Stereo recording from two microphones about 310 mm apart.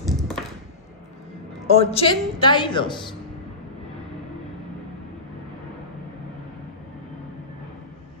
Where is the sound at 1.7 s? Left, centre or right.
Centre.